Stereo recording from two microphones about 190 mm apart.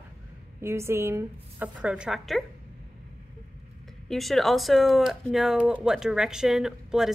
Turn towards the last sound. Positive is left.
turn(degrees=0)  # may be behind; listen again after turning